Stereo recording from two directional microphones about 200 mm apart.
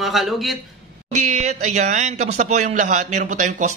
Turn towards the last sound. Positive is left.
turn(degrees=-35)  # may be behind; listen again after turning